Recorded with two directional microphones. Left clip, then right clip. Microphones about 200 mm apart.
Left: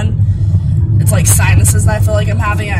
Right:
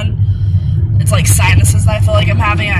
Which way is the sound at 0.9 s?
Centre (ahead or behind).